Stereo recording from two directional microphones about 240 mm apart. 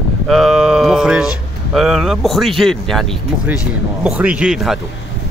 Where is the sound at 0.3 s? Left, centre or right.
Centre.